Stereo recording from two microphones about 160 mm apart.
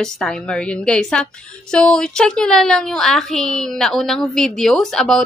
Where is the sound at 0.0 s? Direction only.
5° left (ahead or behind).